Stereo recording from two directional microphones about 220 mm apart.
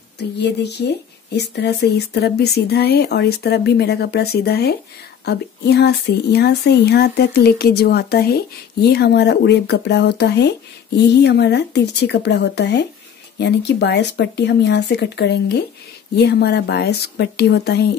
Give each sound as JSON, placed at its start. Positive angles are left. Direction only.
{"t": 0.2, "sound": "speech", "side_deg": 50}